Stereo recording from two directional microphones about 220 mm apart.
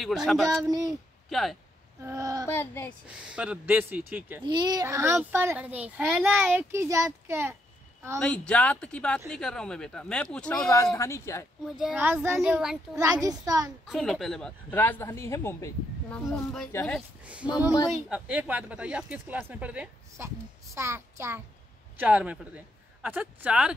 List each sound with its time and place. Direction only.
0.0 s speech: centre (ahead or behind)
0.7 s a child's voice: 15° right (ahead or behind)
1.3 s speech: centre (ahead or behind)
2.0 s a child's voice: 15° right (ahead or behind)
2.4 s speech: 10° left (ahead or behind)
3.3 s a child's voice: 5° right (ahead or behind)
4.4 s a child's voice: 20° right (ahead or behind)
8.2 s speech: 5° left (ahead or behind)
11.8 s speech: 5° right (ahead or behind)
12.9 s a child's voice: 15° right (ahead or behind)
13.8 s speech: centre (ahead or behind)
18.1 s a child's voice: 5° right (ahead or behind)